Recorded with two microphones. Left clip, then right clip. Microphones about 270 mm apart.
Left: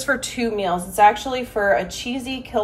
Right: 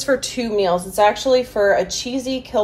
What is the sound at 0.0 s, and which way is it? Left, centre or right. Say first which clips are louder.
A woman's voice: right 2 dB; centre.